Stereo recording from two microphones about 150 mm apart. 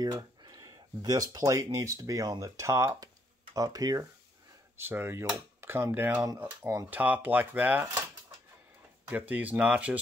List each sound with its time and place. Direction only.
0.0 s speech: 25° right (ahead or behind)
9.3 s speech: 10° right (ahead or behind)